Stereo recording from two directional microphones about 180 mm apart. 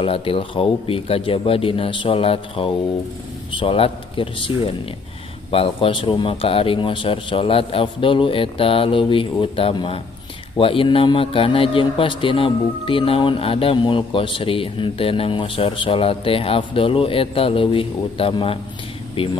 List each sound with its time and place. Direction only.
0.0 s a man's voice: 30° left (ahead or behind)